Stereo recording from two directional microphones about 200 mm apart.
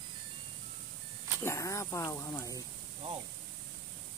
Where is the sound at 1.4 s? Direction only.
15° left (ahead or behind).